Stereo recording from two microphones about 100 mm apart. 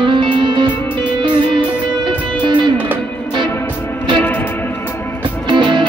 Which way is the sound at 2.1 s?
55° right (ahead or behind).